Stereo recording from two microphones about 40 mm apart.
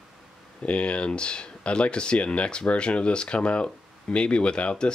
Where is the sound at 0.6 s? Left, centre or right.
Left.